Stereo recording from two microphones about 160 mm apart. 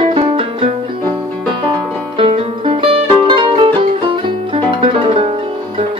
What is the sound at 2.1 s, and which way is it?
Music, 35° right (ahead or behind).